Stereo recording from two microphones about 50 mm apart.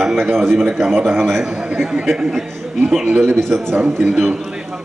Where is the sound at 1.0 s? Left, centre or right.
Right.